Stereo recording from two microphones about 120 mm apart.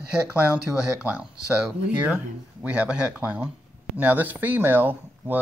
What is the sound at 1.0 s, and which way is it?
Speech, 10° right (ahead or behind).